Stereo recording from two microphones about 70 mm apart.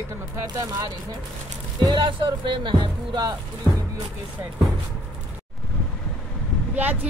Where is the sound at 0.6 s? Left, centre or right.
Right.